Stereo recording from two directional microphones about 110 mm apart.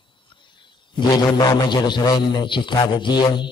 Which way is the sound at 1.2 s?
40° left (ahead or behind).